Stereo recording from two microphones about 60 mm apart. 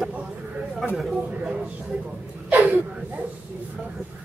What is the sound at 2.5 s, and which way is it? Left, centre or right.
Gasp, right.